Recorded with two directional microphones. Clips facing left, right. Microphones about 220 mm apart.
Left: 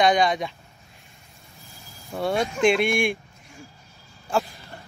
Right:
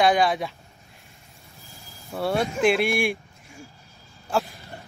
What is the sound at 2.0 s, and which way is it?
Speech, 5° right (ahead or behind).